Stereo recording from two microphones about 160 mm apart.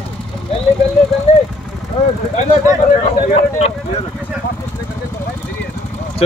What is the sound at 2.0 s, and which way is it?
Vehicle, 35° left (ahead or behind).